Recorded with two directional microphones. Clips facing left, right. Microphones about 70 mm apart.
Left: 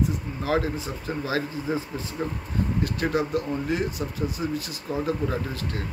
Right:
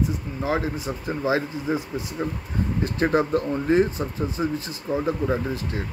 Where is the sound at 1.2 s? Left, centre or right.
Right.